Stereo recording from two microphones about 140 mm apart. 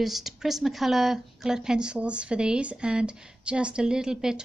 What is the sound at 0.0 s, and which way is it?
Speech, centre (ahead or behind).